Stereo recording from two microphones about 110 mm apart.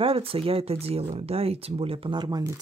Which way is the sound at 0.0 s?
60° right (ahead or behind).